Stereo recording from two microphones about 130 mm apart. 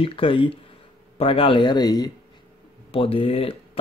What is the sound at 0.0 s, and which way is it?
Speech, 45° left (ahead or behind).